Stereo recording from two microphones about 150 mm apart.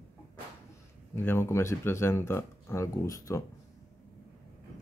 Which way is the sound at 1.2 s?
15° left (ahead or behind).